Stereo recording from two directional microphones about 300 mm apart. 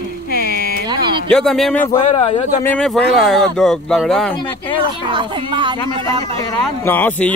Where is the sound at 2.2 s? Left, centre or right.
Left.